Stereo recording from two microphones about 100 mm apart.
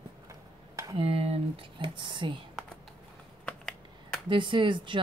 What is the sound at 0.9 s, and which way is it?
Speech, 85° right.